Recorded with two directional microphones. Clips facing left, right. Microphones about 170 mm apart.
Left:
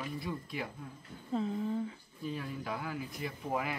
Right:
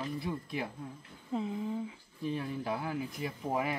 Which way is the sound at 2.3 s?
30° right (ahead or behind).